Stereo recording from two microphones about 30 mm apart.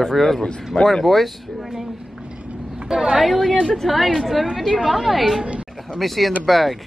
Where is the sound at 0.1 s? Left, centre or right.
Centre.